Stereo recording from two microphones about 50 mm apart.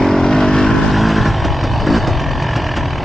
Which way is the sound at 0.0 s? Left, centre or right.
Centre.